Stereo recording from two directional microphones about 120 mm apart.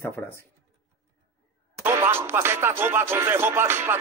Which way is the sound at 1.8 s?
20° right (ahead or behind).